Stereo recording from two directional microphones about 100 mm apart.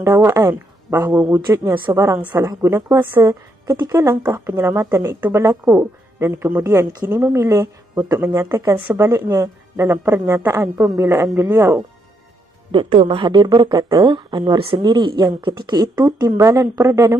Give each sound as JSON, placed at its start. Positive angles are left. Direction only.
{"t": 0.0, "sound": "speech", "side_deg": -30}
{"t": 12.7, "sound": "speech", "side_deg": -60}
{"t": 16.3, "sound": "speech", "side_deg": -30}